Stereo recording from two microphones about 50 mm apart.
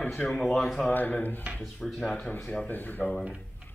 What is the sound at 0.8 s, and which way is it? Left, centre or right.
Speech, left.